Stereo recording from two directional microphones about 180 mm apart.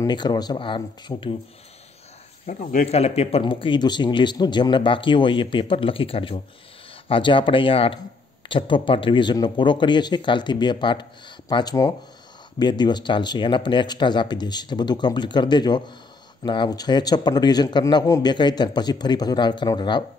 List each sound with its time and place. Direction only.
0.0 s speech: 25° left (ahead or behind)
2.4 s speech: 45° left (ahead or behind); by 20.0 s 25° left (ahead or behind)